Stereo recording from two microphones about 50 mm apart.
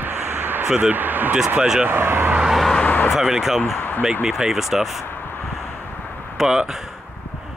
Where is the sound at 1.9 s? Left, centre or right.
Right.